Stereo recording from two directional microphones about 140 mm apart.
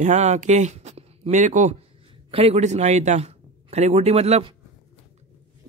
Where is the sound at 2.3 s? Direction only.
50° right (ahead or behind).